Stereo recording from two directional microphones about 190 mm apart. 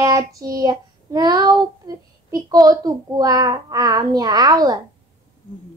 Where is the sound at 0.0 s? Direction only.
15° right (ahead or behind).